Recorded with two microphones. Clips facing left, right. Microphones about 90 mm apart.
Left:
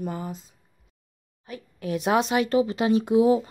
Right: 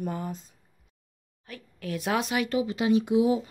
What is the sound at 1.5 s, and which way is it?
Speech, 20° left (ahead or behind).